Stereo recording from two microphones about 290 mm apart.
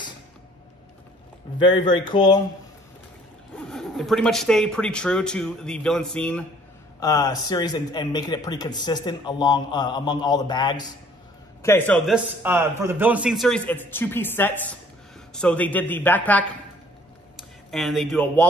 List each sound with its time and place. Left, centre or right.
1.6 s a man's voice: centre
3.5 s a man's voice: centre
12.4 s speech: centre